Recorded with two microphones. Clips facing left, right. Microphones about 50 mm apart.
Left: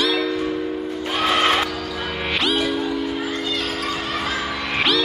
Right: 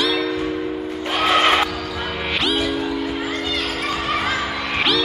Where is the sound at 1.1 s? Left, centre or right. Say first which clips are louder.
Right 2 dB; centre.